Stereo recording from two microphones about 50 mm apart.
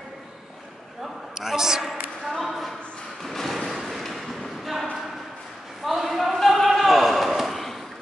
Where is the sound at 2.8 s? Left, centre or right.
Left.